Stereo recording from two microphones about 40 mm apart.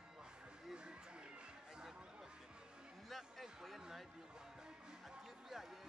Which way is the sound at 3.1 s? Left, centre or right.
Centre.